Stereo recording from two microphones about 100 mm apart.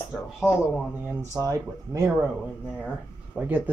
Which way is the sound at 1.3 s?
35° right (ahead or behind).